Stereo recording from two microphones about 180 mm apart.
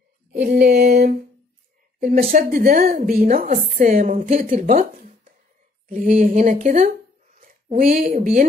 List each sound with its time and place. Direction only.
0.4 s a sound: 60° right (ahead or behind)
2.0 s speech: 55° right (ahead or behind)
4.3 s speech: 40° right (ahead or behind)